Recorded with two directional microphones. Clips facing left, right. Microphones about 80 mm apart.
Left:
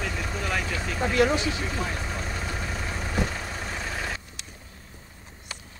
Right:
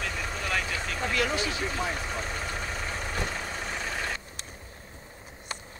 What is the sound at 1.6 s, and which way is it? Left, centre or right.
Vehicle, centre.